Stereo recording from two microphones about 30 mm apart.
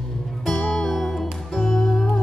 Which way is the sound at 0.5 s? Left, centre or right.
Left.